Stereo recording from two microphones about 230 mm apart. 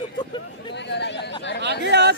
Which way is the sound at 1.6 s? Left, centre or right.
Right.